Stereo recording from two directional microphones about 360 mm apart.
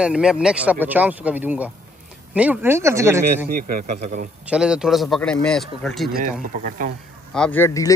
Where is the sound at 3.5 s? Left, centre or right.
Right.